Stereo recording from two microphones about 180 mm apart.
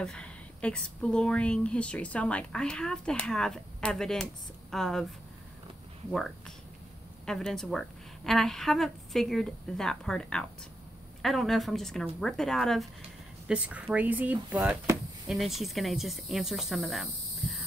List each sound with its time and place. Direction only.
0.0 s a woman's voice: 5° left (ahead or behind)
6.1 s a woman's voice: centre (ahead or behind)